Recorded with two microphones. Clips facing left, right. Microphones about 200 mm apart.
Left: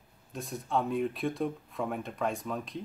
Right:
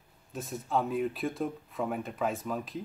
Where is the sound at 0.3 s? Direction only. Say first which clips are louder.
Right 1 dB; centre (ahead or behind).